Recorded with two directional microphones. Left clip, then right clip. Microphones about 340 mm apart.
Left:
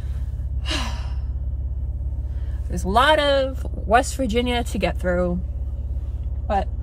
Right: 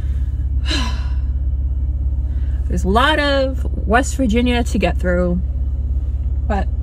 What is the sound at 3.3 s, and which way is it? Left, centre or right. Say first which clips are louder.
Speech: right 2 dB; centre.